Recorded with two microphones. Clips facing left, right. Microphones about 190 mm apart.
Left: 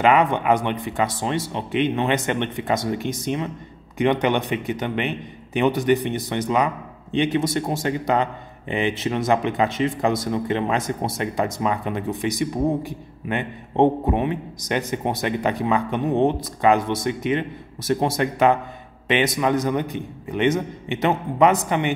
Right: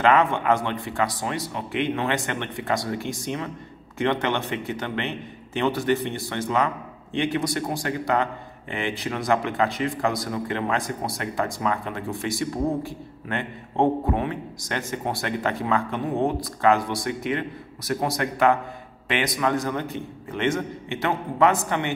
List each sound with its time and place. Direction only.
0.0 s a man's voice: 15° left (ahead or behind)